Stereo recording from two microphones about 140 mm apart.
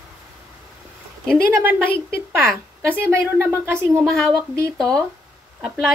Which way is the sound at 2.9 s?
15° right (ahead or behind).